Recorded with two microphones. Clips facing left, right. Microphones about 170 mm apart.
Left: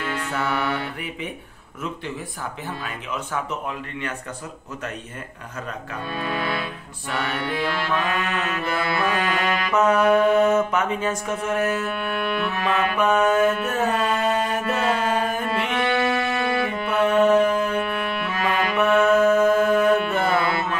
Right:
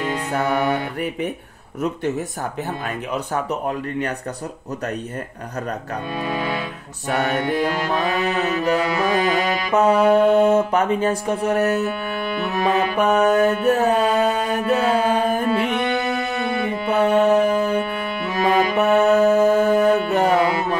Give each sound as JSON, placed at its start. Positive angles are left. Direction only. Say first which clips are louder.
{"t": 0.0, "sound": "music", "louder": "right 4 dB", "side_deg": -35}
{"t": 1.8, "sound": "speech", "louder": "right 8 dB", "side_deg": -45}
{"t": 3.1, "sound": "music", "louder": "right 4 dB", "side_deg": -40}
{"t": 6.1, "sound": "music", "louder": "right 1 dB", "side_deg": -15}
{"t": 7.1, "sound": "music", "louder": "right 6 dB", "side_deg": -45}
{"t": 15.7, "sound": "music", "louder": "even", "side_deg": 0}
{"t": 16.9, "sound": "music", "louder": "right 2 dB", "side_deg": -35}